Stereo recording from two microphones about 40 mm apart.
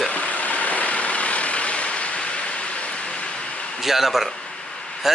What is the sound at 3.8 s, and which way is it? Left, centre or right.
Speech, centre.